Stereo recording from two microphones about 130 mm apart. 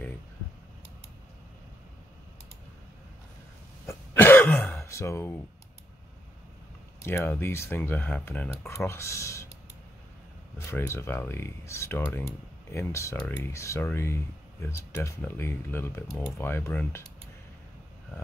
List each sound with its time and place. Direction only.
3.8 s cough: 15° left (ahead or behind)
4.7 s speech: 20° left (ahead or behind)
7.0 s speech: 20° left (ahead or behind)
10.7 s speech: 20° left (ahead or behind)